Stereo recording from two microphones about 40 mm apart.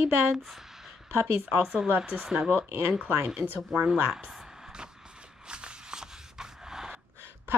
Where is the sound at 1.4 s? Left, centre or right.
Right.